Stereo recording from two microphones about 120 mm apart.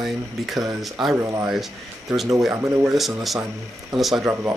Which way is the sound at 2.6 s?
25° right (ahead or behind).